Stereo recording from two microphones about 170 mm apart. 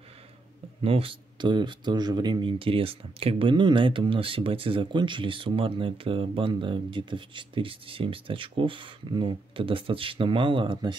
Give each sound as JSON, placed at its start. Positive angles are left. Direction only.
{"t": 0.8, "sound": "speech", "side_deg": -35}